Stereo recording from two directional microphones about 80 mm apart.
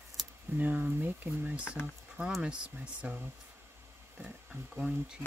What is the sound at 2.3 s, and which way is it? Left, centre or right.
Speech, centre.